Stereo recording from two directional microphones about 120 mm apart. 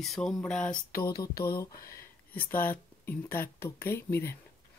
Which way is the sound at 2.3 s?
15° left (ahead or behind).